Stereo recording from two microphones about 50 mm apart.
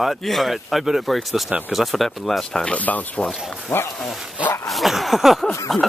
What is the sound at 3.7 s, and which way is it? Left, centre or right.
Speech, left.